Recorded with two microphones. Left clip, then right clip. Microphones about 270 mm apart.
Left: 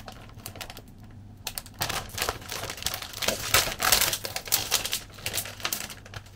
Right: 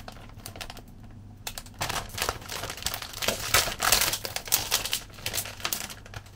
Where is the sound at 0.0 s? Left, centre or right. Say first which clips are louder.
Left 1 dB; centre.